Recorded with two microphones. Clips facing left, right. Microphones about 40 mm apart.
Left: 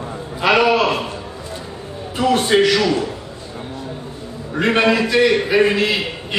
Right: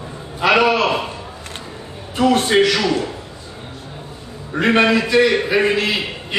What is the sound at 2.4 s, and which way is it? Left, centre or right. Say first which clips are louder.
Speech: even; centre.